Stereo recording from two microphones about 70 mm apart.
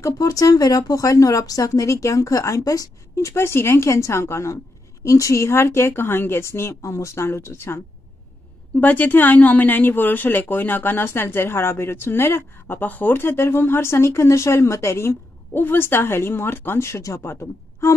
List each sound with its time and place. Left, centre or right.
0.0 s speech: left
8.7 s speech: left
17.2 s speech: left